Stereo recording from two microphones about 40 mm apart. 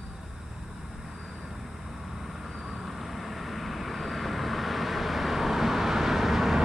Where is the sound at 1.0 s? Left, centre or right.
Centre.